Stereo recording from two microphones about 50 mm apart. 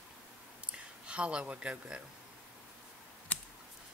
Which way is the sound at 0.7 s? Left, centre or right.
Right.